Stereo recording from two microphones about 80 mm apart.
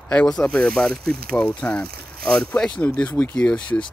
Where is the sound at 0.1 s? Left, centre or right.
Centre.